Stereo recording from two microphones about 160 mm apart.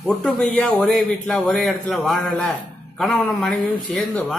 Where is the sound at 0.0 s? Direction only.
Centre (ahead or behind).